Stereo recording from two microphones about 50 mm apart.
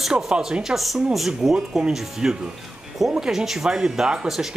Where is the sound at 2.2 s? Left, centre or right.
Centre.